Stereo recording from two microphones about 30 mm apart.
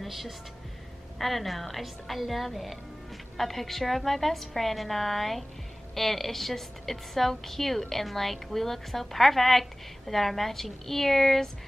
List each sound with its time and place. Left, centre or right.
0.0 s a woman's voice: centre